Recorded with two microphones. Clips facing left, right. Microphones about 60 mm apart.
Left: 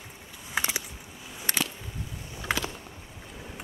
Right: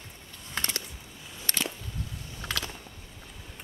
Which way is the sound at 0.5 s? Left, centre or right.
Centre.